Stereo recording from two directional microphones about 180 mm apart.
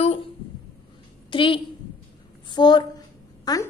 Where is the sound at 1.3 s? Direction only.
30° left (ahead or behind).